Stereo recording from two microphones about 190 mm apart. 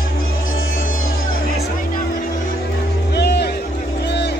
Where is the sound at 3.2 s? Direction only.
60° left (ahead or behind).